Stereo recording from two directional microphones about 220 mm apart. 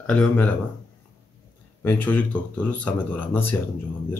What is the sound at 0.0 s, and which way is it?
Speech, 5° left (ahead or behind).